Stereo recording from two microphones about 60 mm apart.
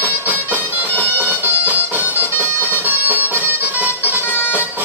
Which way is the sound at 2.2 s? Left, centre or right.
Left.